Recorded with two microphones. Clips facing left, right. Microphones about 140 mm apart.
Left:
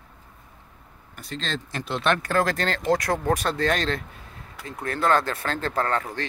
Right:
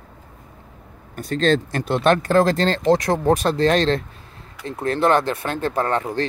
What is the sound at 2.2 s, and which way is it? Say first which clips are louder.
Speech: right 7 dB; 25° right (ahead or behind).